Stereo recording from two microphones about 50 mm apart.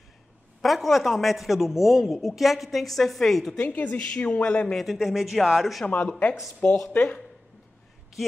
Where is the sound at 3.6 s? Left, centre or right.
Left.